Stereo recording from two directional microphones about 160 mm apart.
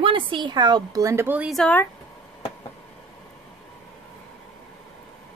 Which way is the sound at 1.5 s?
5° left (ahead or behind).